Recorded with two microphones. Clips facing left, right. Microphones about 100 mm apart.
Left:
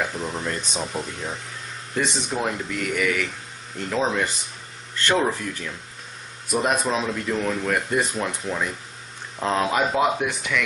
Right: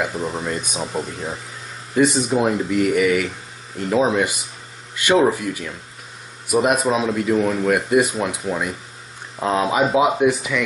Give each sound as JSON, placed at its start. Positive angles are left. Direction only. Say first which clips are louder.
{"t": 0.0, "sound": "speech", "louder": "right 3 dB", "side_deg": -5}